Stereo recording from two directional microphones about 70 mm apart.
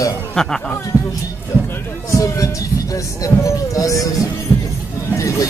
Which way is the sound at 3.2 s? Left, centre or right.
Left.